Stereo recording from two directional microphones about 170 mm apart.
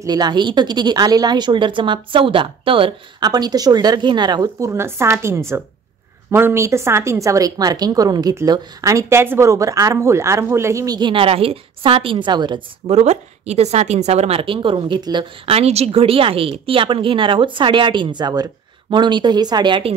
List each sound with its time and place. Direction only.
0.0 s a woman's voice: 25° right (ahead or behind)
15.4 s a woman's voice: 35° right (ahead or behind)